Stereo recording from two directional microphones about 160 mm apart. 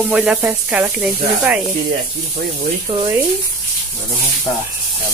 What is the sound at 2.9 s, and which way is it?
Speech, 20° right (ahead or behind).